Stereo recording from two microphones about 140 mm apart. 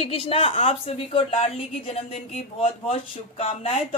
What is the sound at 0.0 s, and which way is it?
Speech, 45° left (ahead or behind).